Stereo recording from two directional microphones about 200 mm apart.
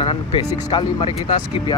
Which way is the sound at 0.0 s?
25° left (ahead or behind).